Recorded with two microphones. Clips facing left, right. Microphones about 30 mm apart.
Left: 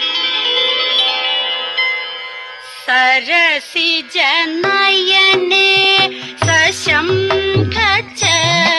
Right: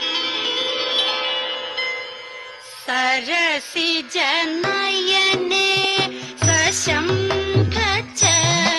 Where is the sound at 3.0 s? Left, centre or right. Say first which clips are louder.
Left 6 dB; left.